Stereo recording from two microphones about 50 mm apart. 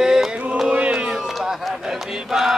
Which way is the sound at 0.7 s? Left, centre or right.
Right.